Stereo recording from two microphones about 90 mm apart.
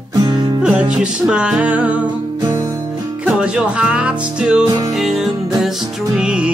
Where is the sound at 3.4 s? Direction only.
10° right (ahead or behind).